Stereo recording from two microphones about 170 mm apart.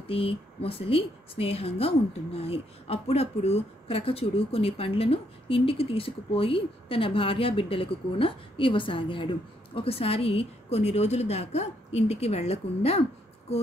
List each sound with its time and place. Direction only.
0.1 s a woman's voice: 35° left (ahead or behind)